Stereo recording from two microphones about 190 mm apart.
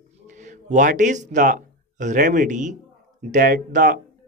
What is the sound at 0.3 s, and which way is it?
Speech, 40° right (ahead or behind).